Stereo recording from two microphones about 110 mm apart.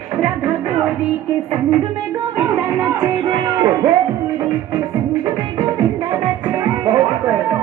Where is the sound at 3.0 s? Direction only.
40° right (ahead or behind).